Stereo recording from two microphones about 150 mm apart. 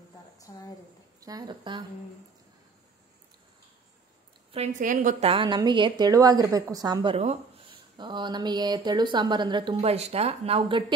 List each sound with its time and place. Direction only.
1.2 s speech: 25° right (ahead or behind)
4.7 s a woman's voice: 60° right (ahead or behind)
5.2 s speech: 35° right (ahead or behind)
7.2 s speech: 40° right (ahead or behind)
9.8 s speech: 45° right (ahead or behind)